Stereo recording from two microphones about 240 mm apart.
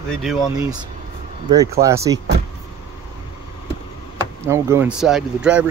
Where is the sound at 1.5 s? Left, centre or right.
Centre.